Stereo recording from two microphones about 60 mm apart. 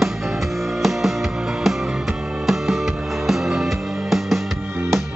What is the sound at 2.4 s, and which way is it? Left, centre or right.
Music, centre.